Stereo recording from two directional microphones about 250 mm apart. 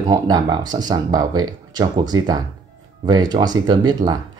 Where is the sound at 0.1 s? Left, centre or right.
Centre.